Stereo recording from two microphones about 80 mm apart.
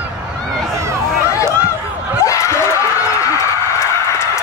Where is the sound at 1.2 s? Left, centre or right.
Left.